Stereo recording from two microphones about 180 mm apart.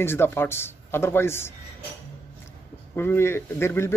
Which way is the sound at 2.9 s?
15° left (ahead or behind).